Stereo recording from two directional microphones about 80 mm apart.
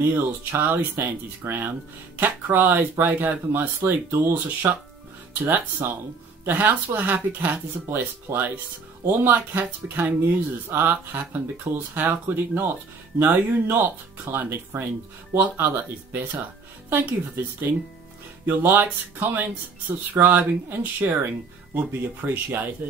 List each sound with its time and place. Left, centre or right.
0.0 s speech: right
18.4 s speech: right